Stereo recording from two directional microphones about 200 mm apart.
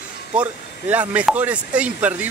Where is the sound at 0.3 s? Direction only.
5° right (ahead or behind).